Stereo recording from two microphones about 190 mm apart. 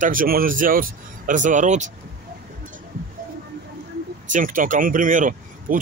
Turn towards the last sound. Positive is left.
turn(degrees=-45)  # may be behind; listen again after turning